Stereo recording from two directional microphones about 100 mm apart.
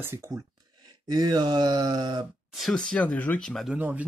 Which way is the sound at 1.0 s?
40° right (ahead or behind).